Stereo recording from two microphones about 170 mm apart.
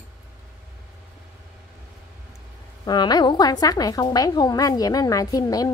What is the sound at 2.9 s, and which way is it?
A woman's voice, 25° left (ahead or behind).